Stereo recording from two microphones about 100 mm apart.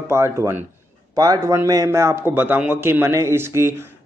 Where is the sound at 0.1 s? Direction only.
25° right (ahead or behind).